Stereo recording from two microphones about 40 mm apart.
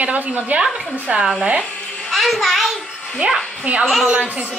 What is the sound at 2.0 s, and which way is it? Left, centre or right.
Speech, centre.